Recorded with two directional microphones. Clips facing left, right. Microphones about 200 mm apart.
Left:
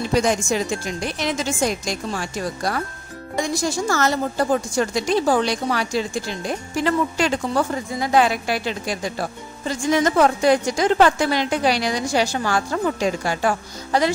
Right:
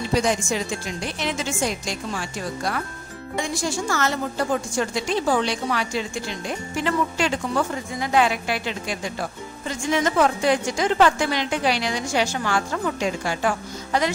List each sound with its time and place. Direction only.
0.2 s a woman's voice: 45° left (ahead or behind)